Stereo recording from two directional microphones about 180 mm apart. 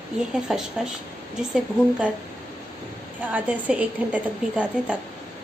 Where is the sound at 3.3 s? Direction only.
10° right (ahead or behind).